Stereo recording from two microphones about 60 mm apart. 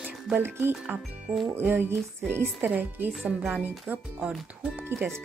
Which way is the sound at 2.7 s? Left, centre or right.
Right.